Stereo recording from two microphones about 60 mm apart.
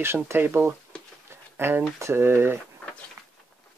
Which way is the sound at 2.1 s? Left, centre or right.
Right.